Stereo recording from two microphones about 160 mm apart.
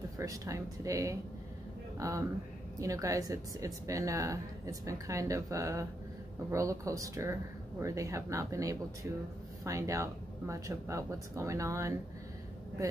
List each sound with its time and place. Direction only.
0.2 s a woman's voice: 20° right (ahead or behind)